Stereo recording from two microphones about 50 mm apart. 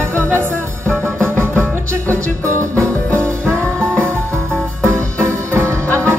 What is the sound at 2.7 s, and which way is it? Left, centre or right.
Music, left.